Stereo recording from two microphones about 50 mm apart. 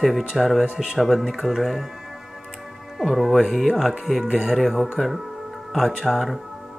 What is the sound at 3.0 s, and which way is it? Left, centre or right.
Speech, centre.